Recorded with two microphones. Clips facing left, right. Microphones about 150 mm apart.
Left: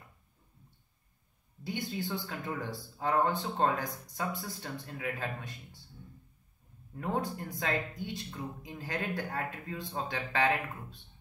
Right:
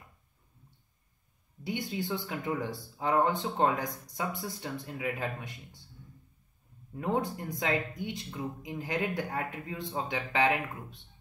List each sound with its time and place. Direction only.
1.6 s speech: 20° right (ahead or behind)
7.0 s speech: 15° right (ahead or behind)